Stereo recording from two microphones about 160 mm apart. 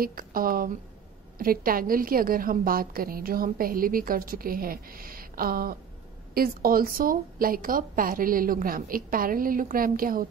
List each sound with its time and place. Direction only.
0.0 s a woman's voice: 60° right (ahead or behind)